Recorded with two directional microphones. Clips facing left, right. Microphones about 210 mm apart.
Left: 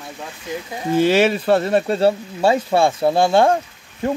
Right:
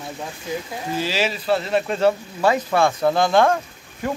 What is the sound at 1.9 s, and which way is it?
Speech, 30° left (ahead or behind).